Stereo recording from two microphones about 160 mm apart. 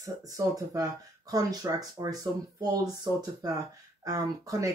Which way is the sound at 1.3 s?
20° right (ahead or behind).